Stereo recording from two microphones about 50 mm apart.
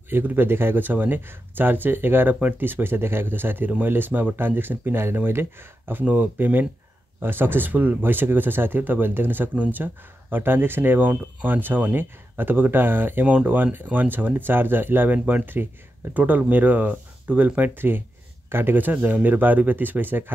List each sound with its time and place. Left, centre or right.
0.1 s speech: right
6.0 s speech: right
17.7 s speech: right